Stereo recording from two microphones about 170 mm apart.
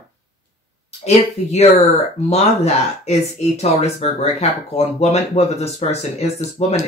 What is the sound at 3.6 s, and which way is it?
Speech, 40° left (ahead or behind).